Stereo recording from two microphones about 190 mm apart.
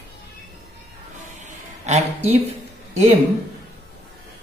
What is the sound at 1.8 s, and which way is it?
Speech, 35° right (ahead or behind).